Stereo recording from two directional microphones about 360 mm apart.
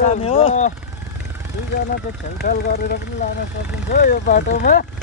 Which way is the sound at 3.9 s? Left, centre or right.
Left.